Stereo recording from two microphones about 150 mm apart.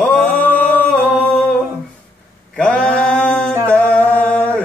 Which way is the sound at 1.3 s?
10° left (ahead or behind).